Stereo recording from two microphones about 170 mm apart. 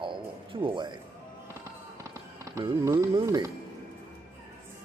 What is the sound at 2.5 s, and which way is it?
Speech, 20° right (ahead or behind).